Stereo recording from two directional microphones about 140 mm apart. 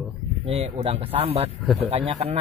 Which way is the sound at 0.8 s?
45° right (ahead or behind).